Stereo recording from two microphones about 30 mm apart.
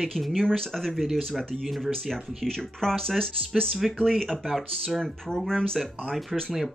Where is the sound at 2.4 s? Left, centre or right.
Centre.